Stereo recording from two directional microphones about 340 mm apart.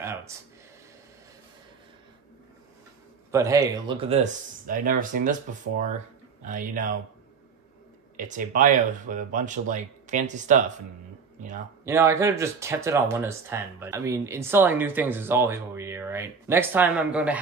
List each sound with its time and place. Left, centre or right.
0.0 s a sound: centre
3.3 s speech: centre
8.2 s speech: right
11.8 s speech: centre